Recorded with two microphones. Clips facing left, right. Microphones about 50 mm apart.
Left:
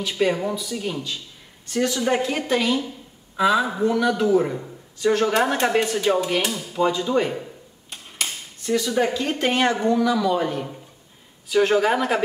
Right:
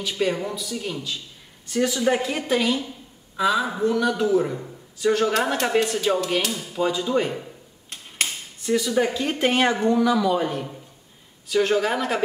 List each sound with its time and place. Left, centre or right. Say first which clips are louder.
0.2 s speech: left 3 dB; centre
1.7 s speech: even; centre
5.3 s speech: left 2 dB; centre
6.6 s speech: left 2 dB; centre
8.6 s a man's voice: even; centre